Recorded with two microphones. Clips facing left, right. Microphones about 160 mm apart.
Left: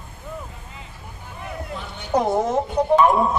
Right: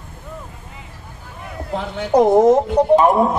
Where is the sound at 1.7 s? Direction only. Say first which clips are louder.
Right 7 dB; 90° right.